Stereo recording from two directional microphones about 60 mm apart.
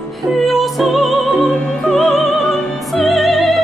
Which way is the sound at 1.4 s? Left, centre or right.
Centre.